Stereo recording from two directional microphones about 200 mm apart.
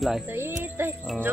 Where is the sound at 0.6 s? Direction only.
10° right (ahead or behind).